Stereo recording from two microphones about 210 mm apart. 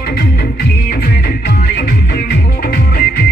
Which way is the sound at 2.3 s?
50° left (ahead or behind).